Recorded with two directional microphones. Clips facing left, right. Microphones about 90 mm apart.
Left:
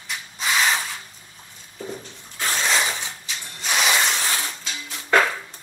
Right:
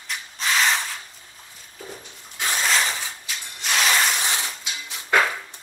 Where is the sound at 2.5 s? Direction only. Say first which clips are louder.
Even; centre (ahead or behind).